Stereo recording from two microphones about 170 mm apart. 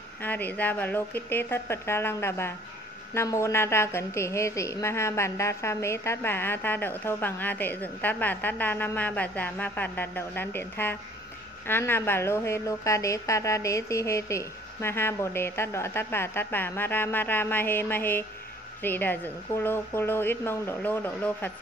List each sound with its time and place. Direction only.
0.2 s a woman's voice: 10° left (ahead or behind)